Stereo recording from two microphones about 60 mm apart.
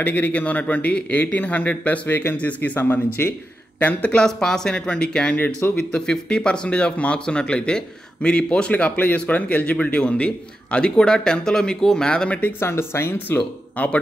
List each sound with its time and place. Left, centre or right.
0.0 s speech: left
3.2 s speech: left
3.8 s speech: left
4.2 s speech: centre
12.5 s speech: left
13.8 s speech: left